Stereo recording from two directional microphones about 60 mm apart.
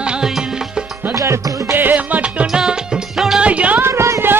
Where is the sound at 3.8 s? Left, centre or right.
Right.